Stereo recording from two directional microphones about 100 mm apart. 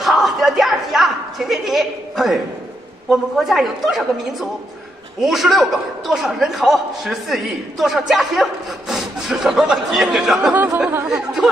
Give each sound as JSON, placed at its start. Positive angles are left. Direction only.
{"t": 0.0, "sound": "a sound", "side_deg": 0}
{"t": 3.1, "sound": "a man's voice", "side_deg": 0}
{"t": 10.9, "sound": "chatter", "side_deg": -25}
{"t": 11.1, "sound": "a man's voice", "side_deg": 0}